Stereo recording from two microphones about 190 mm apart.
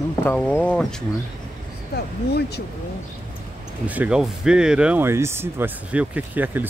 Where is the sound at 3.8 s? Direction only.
5° right (ahead or behind).